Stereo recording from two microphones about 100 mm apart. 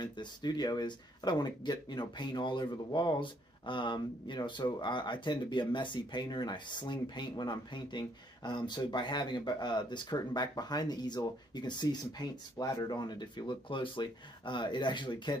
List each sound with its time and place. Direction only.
0.0 s speech: 50° left (ahead or behind)